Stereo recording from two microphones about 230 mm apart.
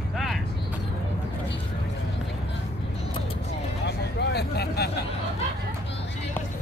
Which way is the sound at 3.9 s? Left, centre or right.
Left.